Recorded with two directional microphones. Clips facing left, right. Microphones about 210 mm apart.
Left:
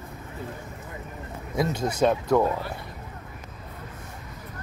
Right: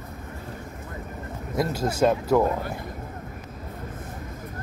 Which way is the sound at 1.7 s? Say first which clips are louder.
Right 2 dB; 5° right (ahead or behind).